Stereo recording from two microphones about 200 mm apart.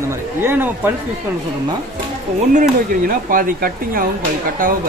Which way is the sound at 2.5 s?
40° right (ahead or behind).